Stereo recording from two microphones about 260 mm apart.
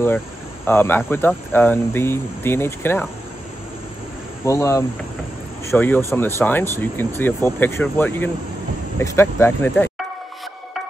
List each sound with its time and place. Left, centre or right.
0.7 s speech: centre
4.5 s speech: centre